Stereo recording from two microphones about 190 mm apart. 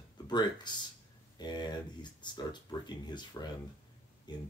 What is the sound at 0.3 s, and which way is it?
Speech, 20° left (ahead or behind).